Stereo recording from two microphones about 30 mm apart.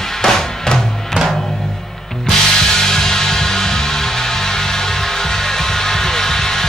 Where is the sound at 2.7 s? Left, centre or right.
Centre.